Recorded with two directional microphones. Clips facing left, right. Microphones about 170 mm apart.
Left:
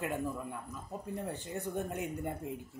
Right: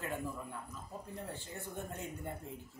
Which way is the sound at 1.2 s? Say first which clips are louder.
Left 7 dB; 15° left (ahead or behind).